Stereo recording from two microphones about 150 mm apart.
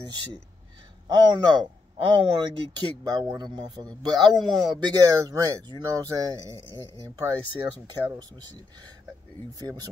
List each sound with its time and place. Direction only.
1.0 s speech: 30° right (ahead or behind)
9.5 s speech: 25° right (ahead or behind)